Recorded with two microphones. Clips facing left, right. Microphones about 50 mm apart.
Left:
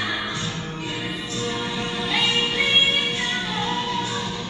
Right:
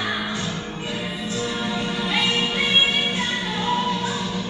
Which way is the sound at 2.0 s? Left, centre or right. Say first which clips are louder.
Left 1 dB; centre.